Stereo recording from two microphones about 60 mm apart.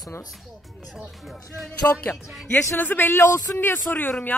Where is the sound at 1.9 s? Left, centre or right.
Left.